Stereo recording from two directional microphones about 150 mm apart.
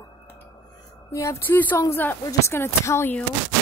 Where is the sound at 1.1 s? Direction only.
20° left (ahead or behind).